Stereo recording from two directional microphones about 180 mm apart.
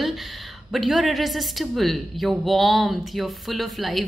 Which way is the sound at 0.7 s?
Centre (ahead or behind).